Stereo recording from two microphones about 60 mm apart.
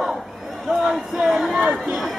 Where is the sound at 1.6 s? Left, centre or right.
Centre.